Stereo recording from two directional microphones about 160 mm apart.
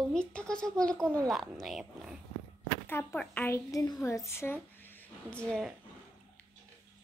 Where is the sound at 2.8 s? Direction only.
10° left (ahead or behind).